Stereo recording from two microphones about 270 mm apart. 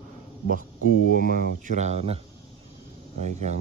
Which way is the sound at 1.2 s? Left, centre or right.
Right.